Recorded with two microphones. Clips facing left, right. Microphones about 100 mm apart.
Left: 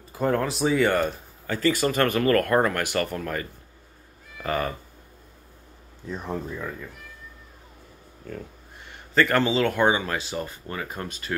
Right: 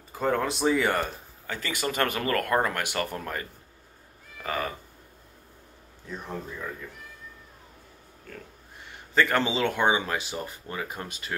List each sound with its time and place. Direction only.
0.2 s speech: 5° left (ahead or behind)
1.5 s speech: 15° right (ahead or behind)
4.4 s speech: centre (ahead or behind)
9.1 s speech: 10° right (ahead or behind)